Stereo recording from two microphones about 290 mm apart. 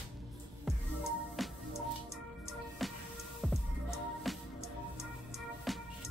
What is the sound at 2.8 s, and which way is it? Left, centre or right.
Music, centre.